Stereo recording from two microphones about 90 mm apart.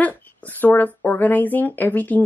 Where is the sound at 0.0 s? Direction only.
20° left (ahead or behind).